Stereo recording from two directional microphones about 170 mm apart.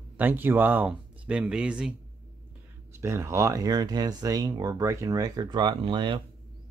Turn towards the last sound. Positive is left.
turn(degrees=-30)  # may be behind; listen again after turning